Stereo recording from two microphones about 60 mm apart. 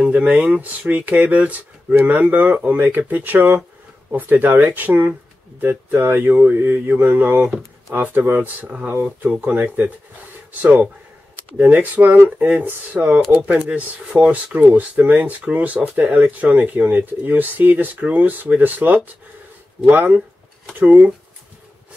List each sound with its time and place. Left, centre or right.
0.1 s speech: right
4.1 s mantra: right
9.4 s speech: right
11.5 s mantra: right
13.3 s speech: centre
20.7 s mantra: right